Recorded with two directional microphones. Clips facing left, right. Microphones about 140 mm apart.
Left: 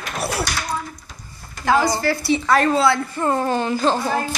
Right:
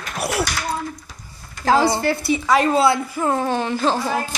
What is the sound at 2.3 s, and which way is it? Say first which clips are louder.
Speech: even; 10° right (ahead or behind).